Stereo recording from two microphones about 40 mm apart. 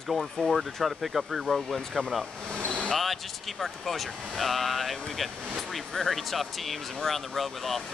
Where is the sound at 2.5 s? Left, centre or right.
Left.